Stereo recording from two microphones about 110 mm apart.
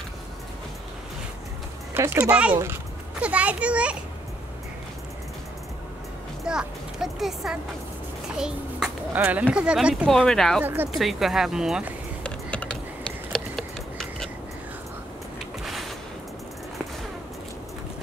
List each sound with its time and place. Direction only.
2.0 s speech: 20° right (ahead or behind)
3.2 s a child's voice: 10° right (ahead or behind)
6.4 s a child's voice: 5° right (ahead or behind)
10.0 s speech: 5° left (ahead or behind)
10.6 s speech: 20° right (ahead or behind)
11.0 s speech: centre (ahead or behind)
12.2 s typing: 10° left (ahead or behind)
15.6 s a sound: centre (ahead or behind)